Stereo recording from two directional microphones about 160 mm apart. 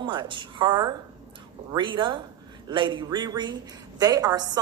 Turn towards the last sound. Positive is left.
turn(degrees=-25)  # may be behind; listen again after turning